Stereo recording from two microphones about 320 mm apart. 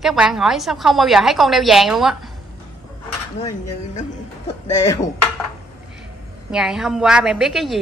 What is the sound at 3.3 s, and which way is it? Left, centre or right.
Speech, centre.